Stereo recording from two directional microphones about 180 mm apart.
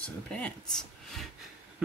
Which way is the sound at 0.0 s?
5° left (ahead or behind).